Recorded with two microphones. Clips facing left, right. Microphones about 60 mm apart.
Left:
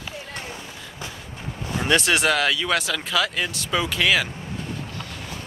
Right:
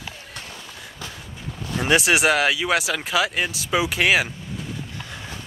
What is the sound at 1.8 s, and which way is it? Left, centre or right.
Speech, centre.